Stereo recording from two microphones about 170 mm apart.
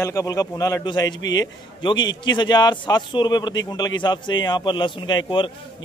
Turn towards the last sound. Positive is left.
turn(degrees=30)  # may be behind; listen again after turning